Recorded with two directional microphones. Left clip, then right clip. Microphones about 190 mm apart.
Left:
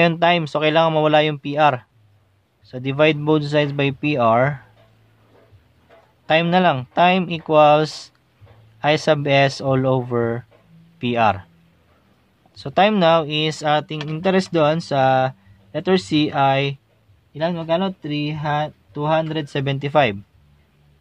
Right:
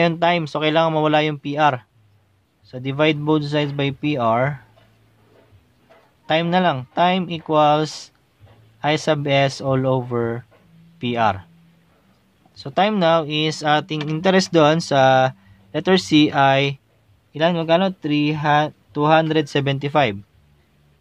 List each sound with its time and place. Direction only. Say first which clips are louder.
0.0 s speech: left 2 dB; 10° left (ahead or behind)
6.2 s speech: left 2 dB; 10° left (ahead or behind)
12.5 s speech: left 2 dB; 10° left (ahead or behind)
17.3 s speech: right 4 dB; 20° right (ahead or behind); by 20.2 s 5° left (ahead or behind)